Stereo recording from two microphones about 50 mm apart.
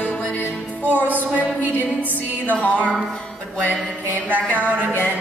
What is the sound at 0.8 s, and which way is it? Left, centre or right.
Music, right.